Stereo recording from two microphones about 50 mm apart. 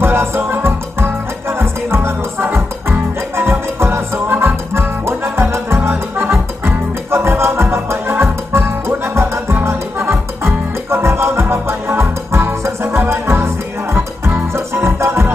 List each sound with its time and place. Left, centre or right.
0.0 s music: right
11.4 s music: right
14.5 s music: right